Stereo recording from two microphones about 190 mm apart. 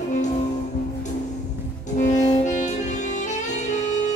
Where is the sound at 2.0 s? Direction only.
40° left (ahead or behind).